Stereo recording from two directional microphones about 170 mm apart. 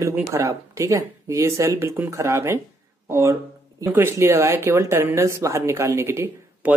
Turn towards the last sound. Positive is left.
turn(degrees=-15)  # may be behind; listen again after turning